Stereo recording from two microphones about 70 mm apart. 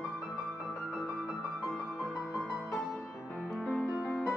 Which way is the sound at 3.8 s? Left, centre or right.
Right.